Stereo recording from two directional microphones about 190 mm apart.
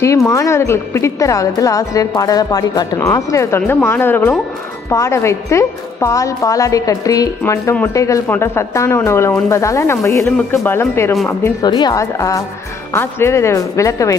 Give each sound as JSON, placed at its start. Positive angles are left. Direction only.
{"t": 0.0, "sound": "a woman's voice", "side_deg": 15}